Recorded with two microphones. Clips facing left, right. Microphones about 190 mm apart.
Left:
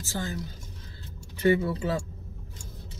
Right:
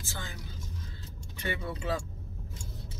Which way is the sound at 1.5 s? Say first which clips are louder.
Left 8 dB; 25° left (ahead or behind).